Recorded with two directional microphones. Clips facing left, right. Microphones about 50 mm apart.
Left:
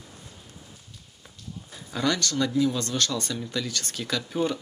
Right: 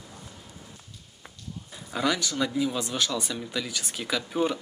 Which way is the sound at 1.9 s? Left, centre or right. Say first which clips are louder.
Left 1 dB; centre.